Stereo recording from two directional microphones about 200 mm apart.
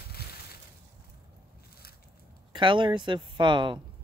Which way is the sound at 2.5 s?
25° right (ahead or behind).